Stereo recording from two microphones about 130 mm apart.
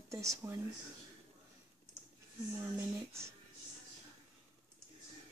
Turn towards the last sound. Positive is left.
turn(degrees=-20)  # may be behind; listen again after turning